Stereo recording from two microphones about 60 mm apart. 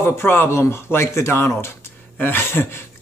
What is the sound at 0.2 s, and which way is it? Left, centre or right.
A man's voice, left.